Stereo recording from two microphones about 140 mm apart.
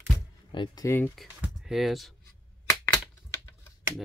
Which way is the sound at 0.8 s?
15° left (ahead or behind).